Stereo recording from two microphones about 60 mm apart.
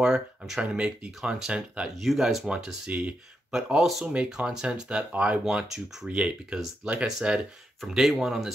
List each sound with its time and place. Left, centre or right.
0.0 s speech: centre
2.0 s speech: centre
2.2 s speech: centre
3.5 s speech: centre
4.0 s speech: centre